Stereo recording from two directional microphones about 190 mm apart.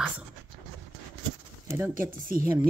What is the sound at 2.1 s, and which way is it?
Speech, 50° right (ahead or behind).